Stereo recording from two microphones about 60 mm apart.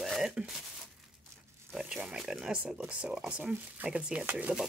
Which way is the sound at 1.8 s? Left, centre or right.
Centre.